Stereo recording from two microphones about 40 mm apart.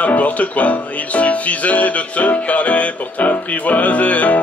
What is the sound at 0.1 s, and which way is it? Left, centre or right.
Music, left.